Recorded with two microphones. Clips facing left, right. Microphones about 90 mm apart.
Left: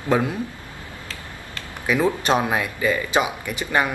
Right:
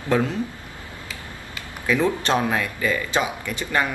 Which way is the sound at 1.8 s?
15° left (ahead or behind).